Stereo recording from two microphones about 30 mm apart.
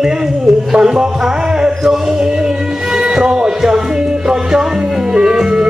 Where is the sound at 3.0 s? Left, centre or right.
Right.